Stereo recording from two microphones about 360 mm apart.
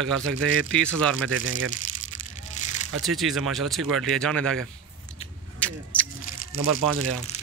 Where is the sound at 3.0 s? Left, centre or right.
Centre.